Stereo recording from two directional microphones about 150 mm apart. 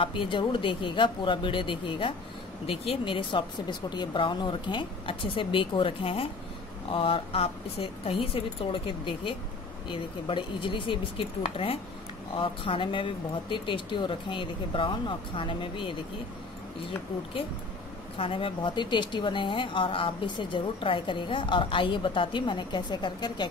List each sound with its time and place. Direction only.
0.0 s a woman's voice: 35° left (ahead or behind)
18.1 s a woman's voice: 35° left (ahead or behind)